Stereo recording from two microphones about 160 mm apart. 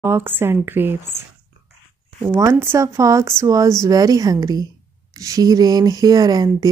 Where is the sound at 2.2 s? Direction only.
15° right (ahead or behind).